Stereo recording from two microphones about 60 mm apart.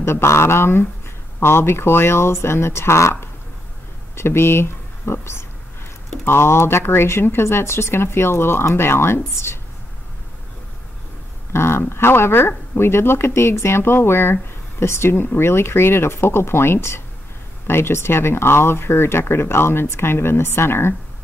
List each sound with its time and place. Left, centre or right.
0.0 s speech: left
11.5 s speech: left